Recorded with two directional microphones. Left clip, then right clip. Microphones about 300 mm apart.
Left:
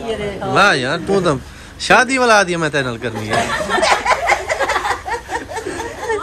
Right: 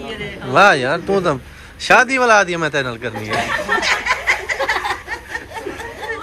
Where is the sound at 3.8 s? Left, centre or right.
Left.